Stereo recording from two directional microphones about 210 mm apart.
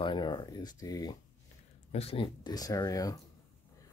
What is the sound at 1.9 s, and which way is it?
Speech, 30° left (ahead or behind).